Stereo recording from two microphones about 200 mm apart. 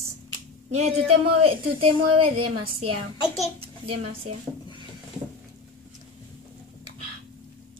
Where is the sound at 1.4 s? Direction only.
30° right (ahead or behind).